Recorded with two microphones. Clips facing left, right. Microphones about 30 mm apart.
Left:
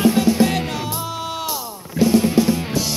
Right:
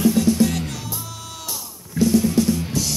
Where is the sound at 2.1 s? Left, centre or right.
Left.